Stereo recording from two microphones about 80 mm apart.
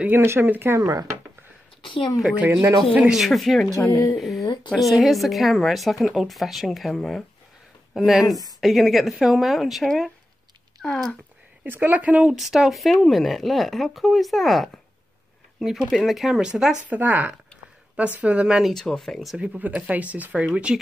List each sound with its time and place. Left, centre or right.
0.0 s speech: right
1.8 s a woman's voice: left
3.1 s speech: centre
3.9 s speech: left
4.2 s a sound: centre
4.7 s speech: centre
10.8 s speech: centre
11.6 s speech: right
12.4 s speech: centre
16.9 s speech: right
18.6 s speech: centre
19.3 s speech: centre